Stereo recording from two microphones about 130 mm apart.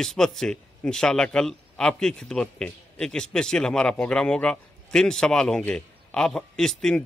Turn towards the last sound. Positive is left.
turn(degrees=5)  # may be behind; listen again after turning